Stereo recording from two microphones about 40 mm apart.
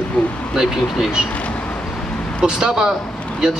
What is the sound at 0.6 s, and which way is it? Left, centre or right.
Speech, centre.